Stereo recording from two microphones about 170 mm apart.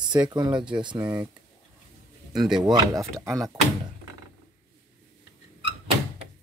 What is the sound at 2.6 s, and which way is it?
Speech, 20° right (ahead or behind).